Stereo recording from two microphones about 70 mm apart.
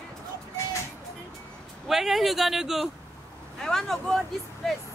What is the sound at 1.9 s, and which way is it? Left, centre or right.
A woman's voice, centre.